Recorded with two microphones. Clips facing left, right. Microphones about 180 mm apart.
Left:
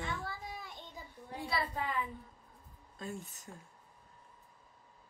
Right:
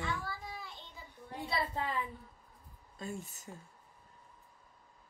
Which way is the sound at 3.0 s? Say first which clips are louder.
Right 1 dB; centre (ahead or behind).